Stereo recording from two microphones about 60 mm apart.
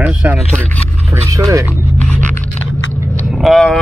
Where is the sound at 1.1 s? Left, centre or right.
Right.